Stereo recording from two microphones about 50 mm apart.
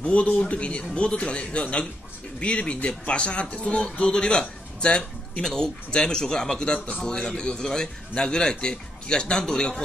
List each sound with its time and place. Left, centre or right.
0.0 s a man's voice: left